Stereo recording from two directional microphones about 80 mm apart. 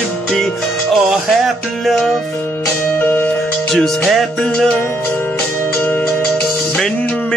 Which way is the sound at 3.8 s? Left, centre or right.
Centre.